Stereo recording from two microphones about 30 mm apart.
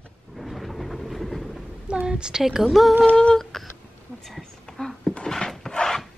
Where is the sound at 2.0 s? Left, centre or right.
Right.